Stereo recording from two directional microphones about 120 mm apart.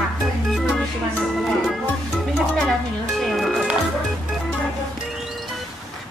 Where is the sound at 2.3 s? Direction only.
5° right (ahead or behind).